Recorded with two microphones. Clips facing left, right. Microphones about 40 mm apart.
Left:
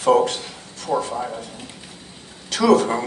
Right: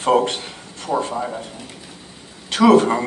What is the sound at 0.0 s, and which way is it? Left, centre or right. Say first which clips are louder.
A man's voice: even; right.